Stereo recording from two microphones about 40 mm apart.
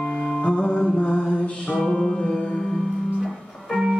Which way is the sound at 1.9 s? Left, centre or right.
Centre.